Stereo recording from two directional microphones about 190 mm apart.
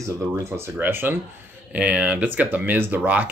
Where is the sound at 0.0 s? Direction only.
15° right (ahead or behind).